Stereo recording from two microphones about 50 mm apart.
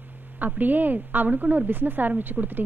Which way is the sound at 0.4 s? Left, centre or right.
Right.